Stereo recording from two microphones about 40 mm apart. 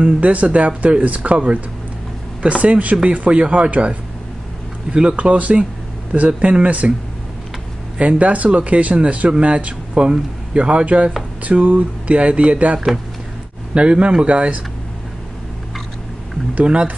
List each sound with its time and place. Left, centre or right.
0.0 s speech: right
5.1 s speech: right
8.0 s speech: right
12.2 s speech: right